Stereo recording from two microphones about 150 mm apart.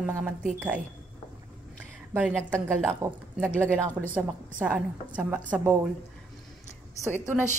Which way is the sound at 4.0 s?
5° right (ahead or behind).